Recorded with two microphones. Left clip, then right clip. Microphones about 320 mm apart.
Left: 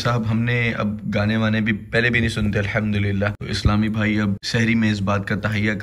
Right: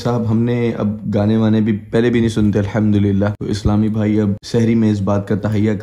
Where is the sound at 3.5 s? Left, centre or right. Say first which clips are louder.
Right 3 dB; centre.